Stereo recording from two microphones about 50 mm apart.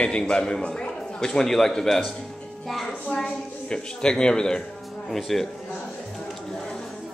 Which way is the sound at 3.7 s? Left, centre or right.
Centre.